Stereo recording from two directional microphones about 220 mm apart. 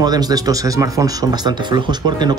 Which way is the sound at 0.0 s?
15° right (ahead or behind).